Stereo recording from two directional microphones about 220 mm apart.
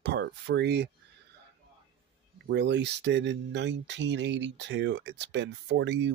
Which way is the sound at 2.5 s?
50° right (ahead or behind).